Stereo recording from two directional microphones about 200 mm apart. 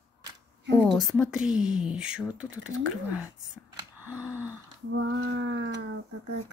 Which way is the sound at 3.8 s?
10° right (ahead or behind).